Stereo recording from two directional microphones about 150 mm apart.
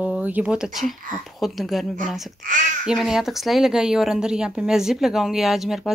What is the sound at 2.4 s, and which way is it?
Babbling, 60° right (ahead or behind).